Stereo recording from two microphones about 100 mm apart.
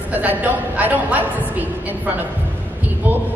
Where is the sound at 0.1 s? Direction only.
15° right (ahead or behind).